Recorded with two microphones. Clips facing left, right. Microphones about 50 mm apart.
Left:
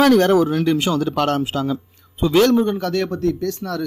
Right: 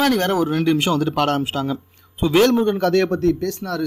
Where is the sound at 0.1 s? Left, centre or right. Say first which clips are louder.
Left 4 dB; right.